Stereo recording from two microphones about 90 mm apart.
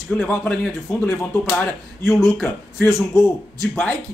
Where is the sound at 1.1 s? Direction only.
25° left (ahead or behind).